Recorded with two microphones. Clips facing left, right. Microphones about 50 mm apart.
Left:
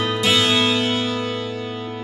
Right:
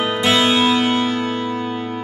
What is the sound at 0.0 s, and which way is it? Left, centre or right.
Music, centre.